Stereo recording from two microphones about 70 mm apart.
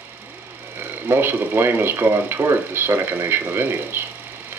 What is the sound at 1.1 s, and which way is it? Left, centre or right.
Speech, right.